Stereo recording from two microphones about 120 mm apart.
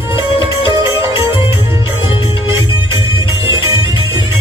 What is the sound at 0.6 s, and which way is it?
Music, 45° left (ahead or behind).